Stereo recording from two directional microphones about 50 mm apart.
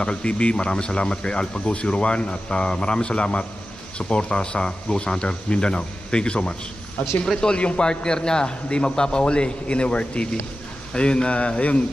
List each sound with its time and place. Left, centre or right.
0.0 s speech: left